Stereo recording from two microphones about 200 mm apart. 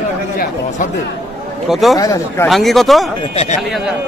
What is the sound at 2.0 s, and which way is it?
Speech, 15° left (ahead or behind).